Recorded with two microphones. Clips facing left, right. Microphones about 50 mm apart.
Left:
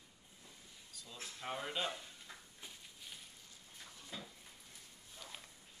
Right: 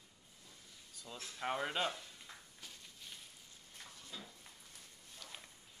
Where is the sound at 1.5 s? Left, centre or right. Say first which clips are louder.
Right 3 dB; right.